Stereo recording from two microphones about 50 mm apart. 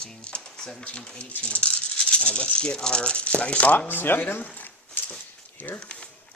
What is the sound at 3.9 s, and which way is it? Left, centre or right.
Speech, left.